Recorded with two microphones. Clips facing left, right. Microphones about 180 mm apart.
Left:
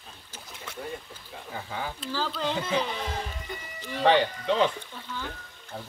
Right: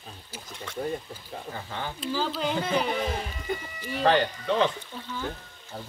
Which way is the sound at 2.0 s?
15° right (ahead or behind).